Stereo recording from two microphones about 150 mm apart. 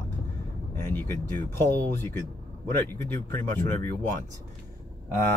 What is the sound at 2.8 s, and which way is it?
Speech, 15° left (ahead or behind).